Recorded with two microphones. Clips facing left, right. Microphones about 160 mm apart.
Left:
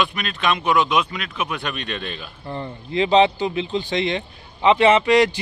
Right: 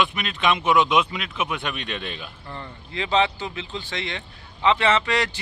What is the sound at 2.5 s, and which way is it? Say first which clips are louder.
Speech: left 10 dB; 20° left (ahead or behind).